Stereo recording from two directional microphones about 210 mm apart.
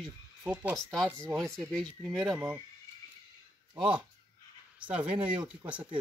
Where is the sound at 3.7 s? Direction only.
5° right (ahead or behind).